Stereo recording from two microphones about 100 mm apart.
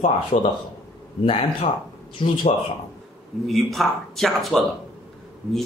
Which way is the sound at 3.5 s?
Centre (ahead or behind).